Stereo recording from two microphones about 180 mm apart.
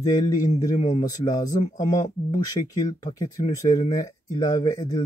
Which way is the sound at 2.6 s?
40° left (ahead or behind).